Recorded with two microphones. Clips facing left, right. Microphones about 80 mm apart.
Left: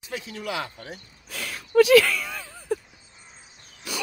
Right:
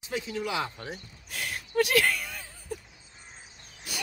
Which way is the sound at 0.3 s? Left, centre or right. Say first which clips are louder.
Even; left.